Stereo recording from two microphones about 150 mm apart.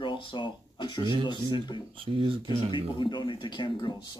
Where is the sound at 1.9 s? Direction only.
35° right (ahead or behind).